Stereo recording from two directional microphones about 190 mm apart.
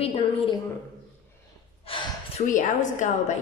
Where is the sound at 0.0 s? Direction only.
30° left (ahead or behind).